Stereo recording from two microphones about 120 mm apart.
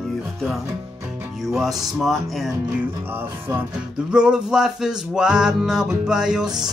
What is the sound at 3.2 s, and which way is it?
Speech, 15° right (ahead or behind).